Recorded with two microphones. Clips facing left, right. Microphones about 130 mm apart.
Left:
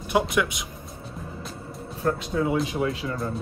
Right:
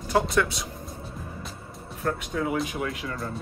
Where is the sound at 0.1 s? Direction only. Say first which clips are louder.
Even; 15° left (ahead or behind).